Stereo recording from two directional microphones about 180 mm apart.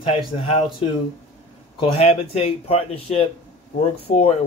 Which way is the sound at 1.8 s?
30° left (ahead or behind).